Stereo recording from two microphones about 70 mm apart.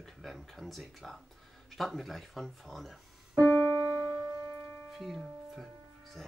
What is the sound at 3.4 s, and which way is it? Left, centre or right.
Music, left.